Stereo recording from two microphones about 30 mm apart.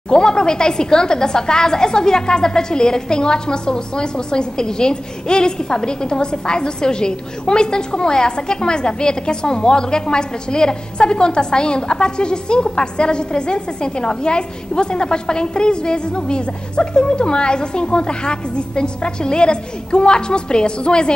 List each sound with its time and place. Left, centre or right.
0.1 s a woman's voice: left